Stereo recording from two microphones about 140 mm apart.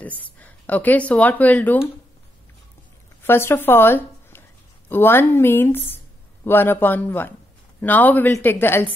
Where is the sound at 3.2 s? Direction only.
15° left (ahead or behind).